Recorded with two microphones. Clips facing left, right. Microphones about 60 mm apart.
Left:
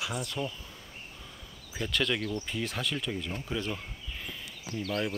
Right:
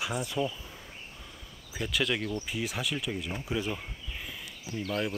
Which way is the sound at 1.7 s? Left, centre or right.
Centre.